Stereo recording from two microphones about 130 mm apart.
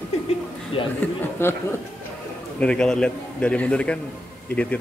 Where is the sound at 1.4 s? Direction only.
20° left (ahead or behind).